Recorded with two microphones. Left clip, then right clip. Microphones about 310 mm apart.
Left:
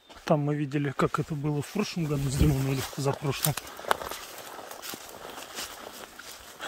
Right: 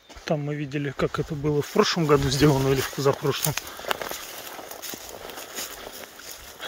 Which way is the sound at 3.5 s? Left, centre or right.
Right.